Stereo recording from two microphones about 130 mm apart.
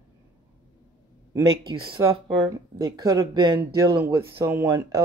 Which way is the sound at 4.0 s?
20° right (ahead or behind).